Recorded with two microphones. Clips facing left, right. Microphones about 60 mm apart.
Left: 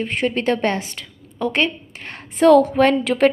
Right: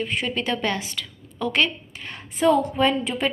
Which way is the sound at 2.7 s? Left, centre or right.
Left.